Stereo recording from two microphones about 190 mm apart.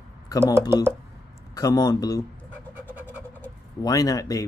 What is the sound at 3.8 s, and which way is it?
Speech, 20° left (ahead or behind).